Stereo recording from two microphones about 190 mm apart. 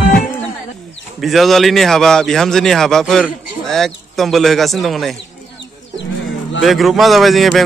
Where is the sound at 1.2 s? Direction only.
Centre (ahead or behind).